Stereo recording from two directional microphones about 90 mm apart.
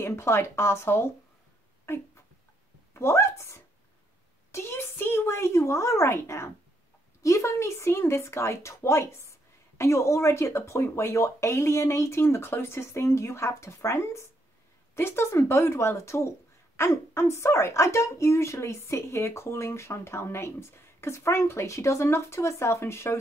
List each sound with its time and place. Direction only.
0.0 s speech: 30° left (ahead or behind)
2.9 s a woman's voice: 30° left (ahead or behind)